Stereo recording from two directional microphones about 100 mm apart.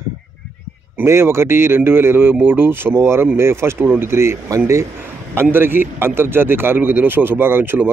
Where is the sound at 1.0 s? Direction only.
25° right (ahead or behind).